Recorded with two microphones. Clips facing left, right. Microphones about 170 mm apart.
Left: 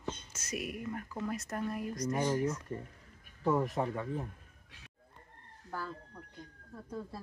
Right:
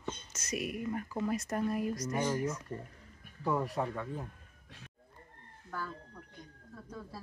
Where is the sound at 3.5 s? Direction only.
20° left (ahead or behind).